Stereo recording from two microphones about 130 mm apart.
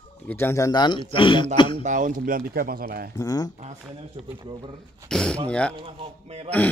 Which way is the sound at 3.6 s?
50° right (ahead or behind).